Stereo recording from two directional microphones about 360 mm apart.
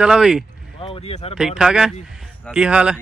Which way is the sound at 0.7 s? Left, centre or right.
Centre.